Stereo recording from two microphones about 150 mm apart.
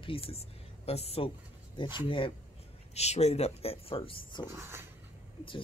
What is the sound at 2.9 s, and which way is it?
Speech, 45° left (ahead or behind).